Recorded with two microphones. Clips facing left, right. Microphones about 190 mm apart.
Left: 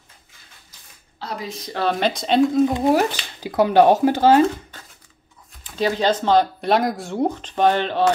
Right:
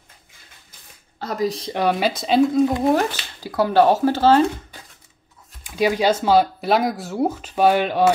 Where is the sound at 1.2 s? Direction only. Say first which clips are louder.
Right 7 dB; 40° right (ahead or behind).